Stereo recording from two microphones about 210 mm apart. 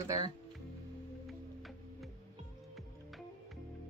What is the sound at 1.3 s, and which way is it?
Music, centre (ahead or behind).